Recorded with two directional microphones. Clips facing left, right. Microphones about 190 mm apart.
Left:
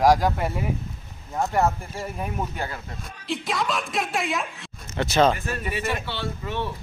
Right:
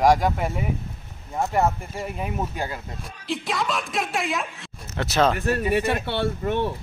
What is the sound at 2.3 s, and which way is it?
Speech, 15° right (ahead or behind).